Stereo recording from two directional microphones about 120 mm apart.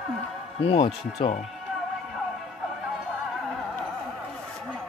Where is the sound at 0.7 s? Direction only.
50° left (ahead or behind).